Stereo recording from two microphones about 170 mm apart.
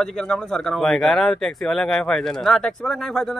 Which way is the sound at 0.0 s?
5° left (ahead or behind).